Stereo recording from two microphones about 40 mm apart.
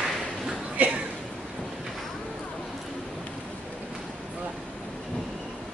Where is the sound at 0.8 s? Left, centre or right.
Right.